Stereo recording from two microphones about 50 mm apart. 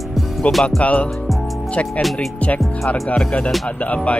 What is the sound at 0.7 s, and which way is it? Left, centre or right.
Speech, left.